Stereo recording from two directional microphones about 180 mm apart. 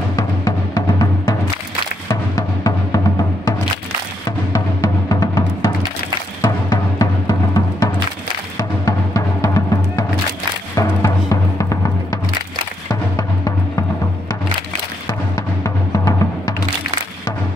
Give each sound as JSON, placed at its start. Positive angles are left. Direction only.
{"t": 0.1, "sound": "timpani", "side_deg": 20}
{"t": 2.0, "sound": "music", "side_deg": 20}
{"t": 4.5, "sound": "timpani", "side_deg": 20}
{"t": 6.4, "sound": "music", "side_deg": 20}
{"t": 15.0, "sound": "music", "side_deg": 20}